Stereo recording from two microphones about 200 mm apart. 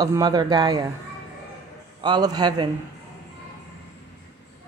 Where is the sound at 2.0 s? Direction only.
20° right (ahead or behind).